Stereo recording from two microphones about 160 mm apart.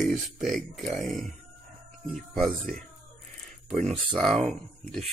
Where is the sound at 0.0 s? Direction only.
Centre (ahead or behind).